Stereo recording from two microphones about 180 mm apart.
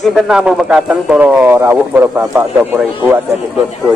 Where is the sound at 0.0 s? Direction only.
5° right (ahead or behind).